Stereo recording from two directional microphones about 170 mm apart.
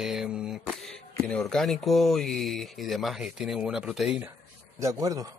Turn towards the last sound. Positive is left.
turn(degrees=-20)  # may be behind; listen again after turning